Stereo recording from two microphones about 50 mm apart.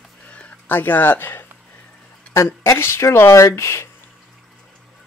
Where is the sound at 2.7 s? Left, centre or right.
Left.